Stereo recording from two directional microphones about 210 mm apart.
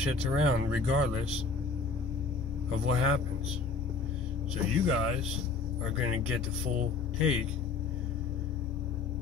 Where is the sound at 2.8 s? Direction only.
85° right.